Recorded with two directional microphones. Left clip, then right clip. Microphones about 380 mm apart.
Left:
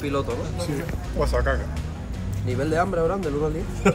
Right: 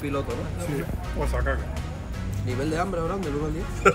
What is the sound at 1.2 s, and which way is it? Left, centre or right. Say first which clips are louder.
Speech: left 6 dB; left.